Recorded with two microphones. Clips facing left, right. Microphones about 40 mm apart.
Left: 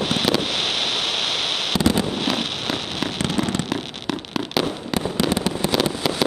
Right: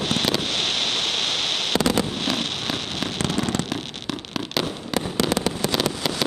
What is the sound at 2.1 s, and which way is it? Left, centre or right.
Fireworks, centre.